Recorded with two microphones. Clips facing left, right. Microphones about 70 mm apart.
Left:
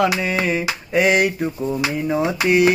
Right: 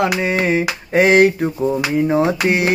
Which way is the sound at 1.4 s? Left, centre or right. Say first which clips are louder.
Right 4 dB; right.